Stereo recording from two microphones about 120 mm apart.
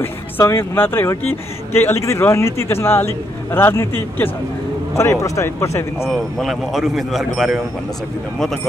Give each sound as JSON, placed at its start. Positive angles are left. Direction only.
{"t": 0.0, "sound": "a man's voice", "side_deg": 20}
{"t": 4.9, "sound": "a man's voice", "side_deg": 25}
{"t": 6.0, "sound": "speech", "side_deg": 0}